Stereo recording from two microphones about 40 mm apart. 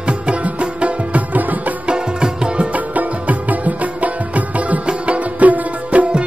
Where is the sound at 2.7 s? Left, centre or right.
Right.